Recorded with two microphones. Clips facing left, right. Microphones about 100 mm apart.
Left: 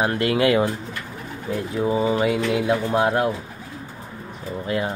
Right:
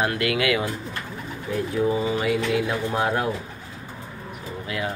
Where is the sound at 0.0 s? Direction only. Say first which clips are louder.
Left 4 dB; 30° left (ahead or behind).